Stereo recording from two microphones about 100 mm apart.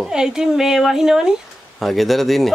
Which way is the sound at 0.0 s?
5° right (ahead or behind).